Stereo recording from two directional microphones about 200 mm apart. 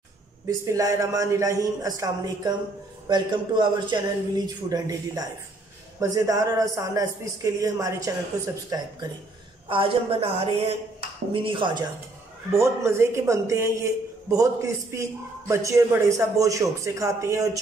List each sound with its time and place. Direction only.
0.5 s a man's voice: 15° right (ahead or behind)
12.4 s a man's voice: 15° right (ahead or behind)